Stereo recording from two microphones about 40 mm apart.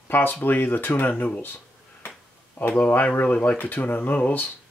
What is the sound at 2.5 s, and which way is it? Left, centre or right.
Speech, left.